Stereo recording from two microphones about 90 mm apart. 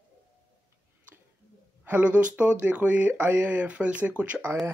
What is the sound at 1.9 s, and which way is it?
Speech, 15° right (ahead or behind).